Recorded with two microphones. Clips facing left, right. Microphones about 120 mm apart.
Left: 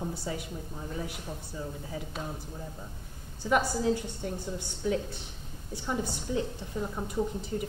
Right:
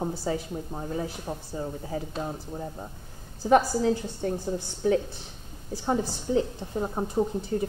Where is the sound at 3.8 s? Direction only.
35° right (ahead or behind).